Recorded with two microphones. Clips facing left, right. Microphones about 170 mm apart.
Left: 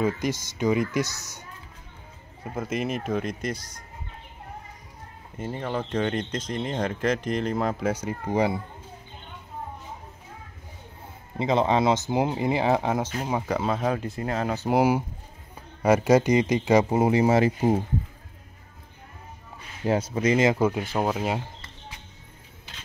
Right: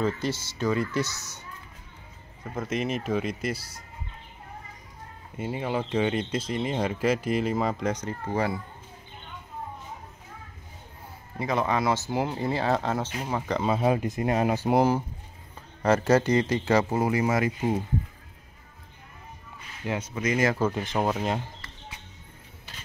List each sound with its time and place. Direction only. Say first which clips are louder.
0.0 s speech: left 2 dB; 15° left (ahead or behind)
2.4 s speech: left 1 dB; 5° left (ahead or behind)
5.4 s speech: right 1 dB; 10° right (ahead or behind); by 8.5 s 15° left (ahead or behind)
11.3 s speech: left 4 dB; 25° left (ahead or behind); by 13.7 s 5° left (ahead or behind)
13.7 s speech: right 2 dB; 10° right (ahead or behind)
14.7 s speech: left 3 dB; 10° left (ahead or behind); by 17.8 s 35° left (ahead or behind)
19.8 s speech: left 6 dB; 35° left (ahead or behind); by 21.4 s 5° left (ahead or behind)